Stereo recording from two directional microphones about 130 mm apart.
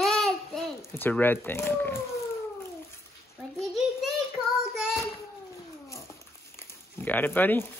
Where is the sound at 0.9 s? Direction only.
15° left (ahead or behind).